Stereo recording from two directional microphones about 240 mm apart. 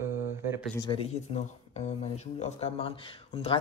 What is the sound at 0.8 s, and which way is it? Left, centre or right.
Speech, left.